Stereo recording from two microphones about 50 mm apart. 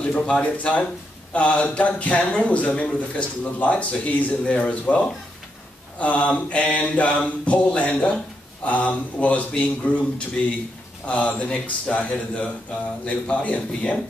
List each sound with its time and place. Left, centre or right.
0.0 s speech: left